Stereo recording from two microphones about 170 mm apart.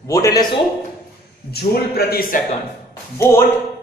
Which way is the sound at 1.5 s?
65° left (ahead or behind).